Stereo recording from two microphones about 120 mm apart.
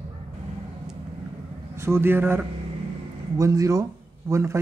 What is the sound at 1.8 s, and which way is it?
A man's voice, 20° right (ahead or behind).